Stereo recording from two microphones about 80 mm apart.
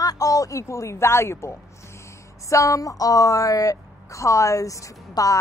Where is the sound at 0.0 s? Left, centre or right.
Left.